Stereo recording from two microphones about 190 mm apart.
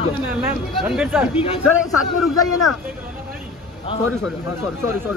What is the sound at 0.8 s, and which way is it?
Speech, 5° right (ahead or behind).